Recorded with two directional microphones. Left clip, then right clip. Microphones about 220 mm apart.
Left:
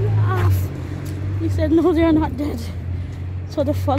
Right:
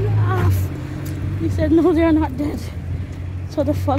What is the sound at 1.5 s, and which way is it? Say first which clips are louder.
Speech: right 1 dB; 5° left (ahead or behind).